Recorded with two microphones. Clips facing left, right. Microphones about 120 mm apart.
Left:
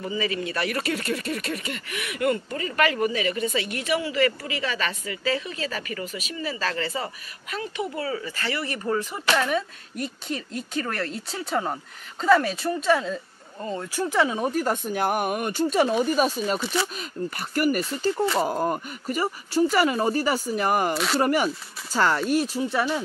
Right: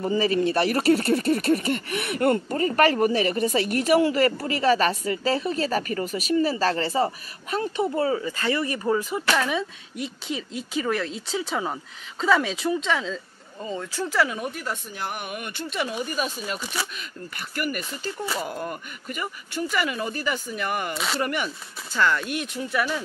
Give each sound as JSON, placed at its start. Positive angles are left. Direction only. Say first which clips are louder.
{"t": 0.2, "sound": "speech", "louder": "right 6 dB", "side_deg": -35}
{"t": 8.2, "sound": "speech", "louder": "right 4 dB", "side_deg": -20}
{"t": 9.4, "sound": "speech", "louder": "left 1 dB", "side_deg": 0}
{"t": 13.6, "sound": "speech", "louder": "left 1 dB", "side_deg": 0}
{"t": 13.9, "sound": "speech", "louder": "left 2 dB", "side_deg": 20}
{"t": 14.5, "sound": "speech", "louder": "left 8 dB", "side_deg": 45}
{"t": 20.9, "sound": "speech", "louder": "left 4 dB", "side_deg": 0}
{"t": 21.2, "sound": "speech", "louder": "left 5 dB", "side_deg": 40}